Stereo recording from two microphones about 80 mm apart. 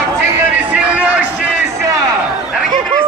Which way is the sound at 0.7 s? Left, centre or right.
Centre.